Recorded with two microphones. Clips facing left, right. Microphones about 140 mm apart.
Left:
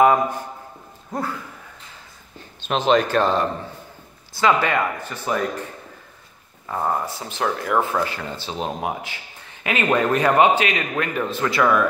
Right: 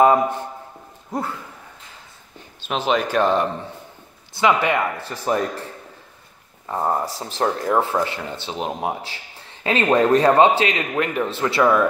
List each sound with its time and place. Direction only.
0.0 s a man's voice: 25° right (ahead or behind)
2.7 s speech: 10° right (ahead or behind)
4.9 s speech: 35° right (ahead or behind)
6.7 s speech: 20° right (ahead or behind)
7.1 s speech: 35° right (ahead or behind); by 8.9 s 20° right (ahead or behind)
9.0 s a sound: 30° right (ahead or behind)
9.8 s speech: 30° right (ahead or behind)